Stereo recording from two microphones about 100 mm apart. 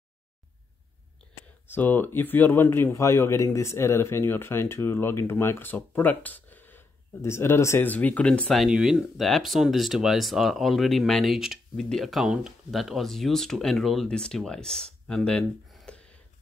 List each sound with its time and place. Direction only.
1.7 s a man's voice: 20° left (ahead or behind)
7.9 s speech: 15° left (ahead or behind)
8.5 s speech: 5° right (ahead or behind); by 16.2 s 10° left (ahead or behind)